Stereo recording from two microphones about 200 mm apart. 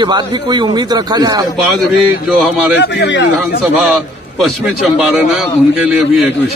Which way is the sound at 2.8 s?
65° left (ahead or behind).